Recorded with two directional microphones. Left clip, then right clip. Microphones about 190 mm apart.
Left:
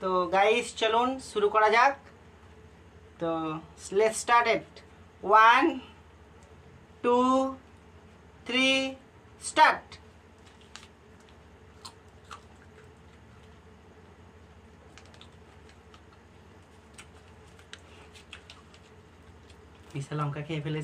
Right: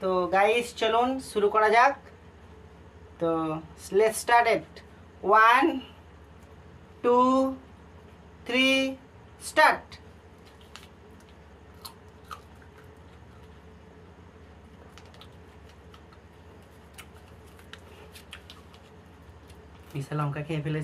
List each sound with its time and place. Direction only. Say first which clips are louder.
0.0 s speech: right 1 dB; centre (ahead or behind)
3.2 s speech: right 4 dB; centre (ahead or behind)
7.0 s speech: right 2 dB; centre (ahead or behind)
8.5 s speech: right 2 dB; centre (ahead or behind)
19.9 s speech: right 2 dB; centre (ahead or behind)